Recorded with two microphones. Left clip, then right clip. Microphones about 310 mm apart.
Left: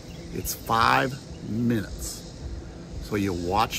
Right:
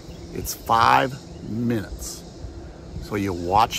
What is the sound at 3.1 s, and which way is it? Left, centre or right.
Speech, centre.